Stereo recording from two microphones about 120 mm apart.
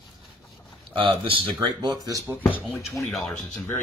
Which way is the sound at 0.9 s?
45° right (ahead or behind).